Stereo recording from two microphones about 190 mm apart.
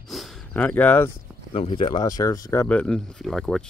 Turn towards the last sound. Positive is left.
turn(degrees=0)  # may be behind; listen again after turning